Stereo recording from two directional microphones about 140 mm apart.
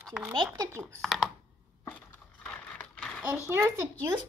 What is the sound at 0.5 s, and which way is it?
Speech, 20° right (ahead or behind).